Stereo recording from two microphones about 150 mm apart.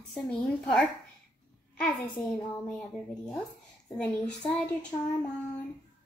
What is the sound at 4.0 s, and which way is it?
Speech, 5° left (ahead or behind).